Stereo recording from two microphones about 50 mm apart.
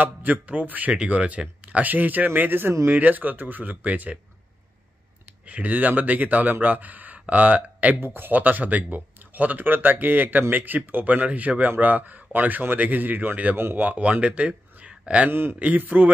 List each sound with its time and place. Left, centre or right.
0.0 s speech: right
5.4 s speech: right
8.0 s a man's voice: right
8.3 s speech: right
14.2 s speech: right
14.8 s a sound: right
15.6 s speech: right